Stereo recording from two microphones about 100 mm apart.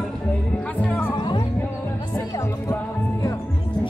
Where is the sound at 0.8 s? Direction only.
20° left (ahead or behind).